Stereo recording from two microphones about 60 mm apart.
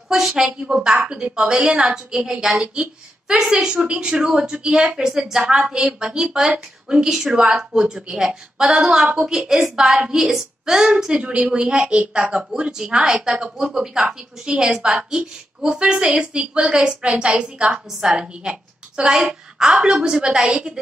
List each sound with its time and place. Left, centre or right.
0.1 s a woman's voice: centre
3.7 s a woman's voice: centre
11.2 s a woman's voice: right